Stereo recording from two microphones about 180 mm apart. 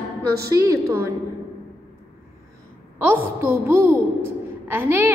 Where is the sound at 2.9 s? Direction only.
10° right (ahead or behind).